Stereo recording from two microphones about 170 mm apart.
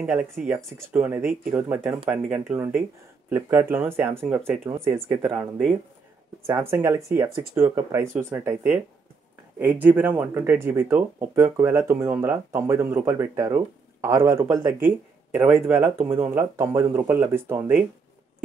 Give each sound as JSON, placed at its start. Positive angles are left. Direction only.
{"t": 0.0, "sound": "speech", "side_deg": -5}
{"t": 5.4, "sound": "speech", "side_deg": 5}
{"t": 6.4, "sound": "speech", "side_deg": -15}